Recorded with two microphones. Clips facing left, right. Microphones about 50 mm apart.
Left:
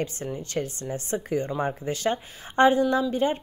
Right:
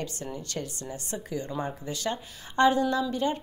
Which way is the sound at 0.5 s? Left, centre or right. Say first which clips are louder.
Left 6 dB; left.